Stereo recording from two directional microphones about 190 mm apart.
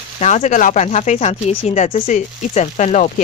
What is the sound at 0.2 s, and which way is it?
Speech, 40° left (ahead or behind).